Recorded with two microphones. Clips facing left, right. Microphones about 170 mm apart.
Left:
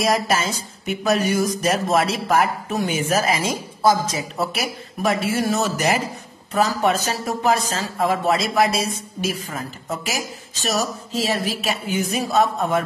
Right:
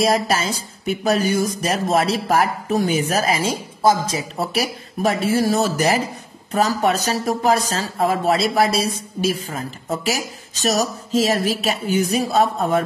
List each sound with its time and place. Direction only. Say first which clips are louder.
0.0 s speech: right 2 dB; 30° right (ahead or behind)